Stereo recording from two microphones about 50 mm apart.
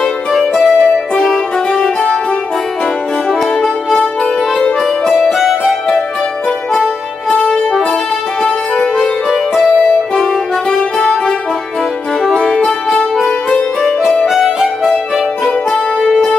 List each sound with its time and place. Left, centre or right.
0.3 s music: centre
0.7 s music: centre
3.3 s music: centre
3.9 s music: centre
4.8 s music: centre
5.2 s music: centre
7.2 s music: left
10.7 s music: centre
12.2 s music: centre
14.4 s music: centre
16.1 s music: centre